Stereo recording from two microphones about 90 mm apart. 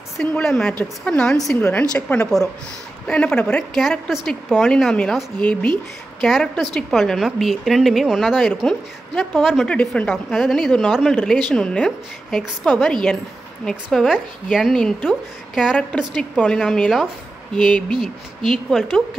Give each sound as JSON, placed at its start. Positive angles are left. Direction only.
{"t": 0.4, "sound": "a woman's voice", "side_deg": 5}
{"t": 1.6, "sound": "a woman's voice", "side_deg": 15}
{"t": 3.7, "sound": "a woman's voice", "side_deg": 0}
{"t": 6.2, "sound": "a woman's voice", "side_deg": 5}
{"t": 9.7, "sound": "a woman's voice", "side_deg": 10}
{"t": 10.3, "sound": "a woman's voice", "side_deg": 0}
{"t": 13.9, "sound": "a woman's voice", "side_deg": -5}
{"t": 16.2, "sound": "a woman's voice", "side_deg": 10}